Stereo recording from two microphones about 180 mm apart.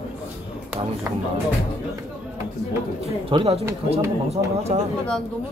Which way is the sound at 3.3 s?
35° right (ahead or behind).